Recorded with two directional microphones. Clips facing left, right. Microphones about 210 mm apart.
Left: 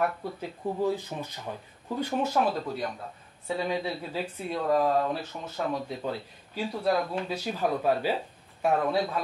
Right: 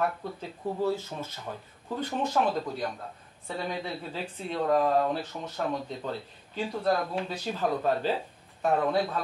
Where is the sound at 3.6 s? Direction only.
10° left (ahead or behind).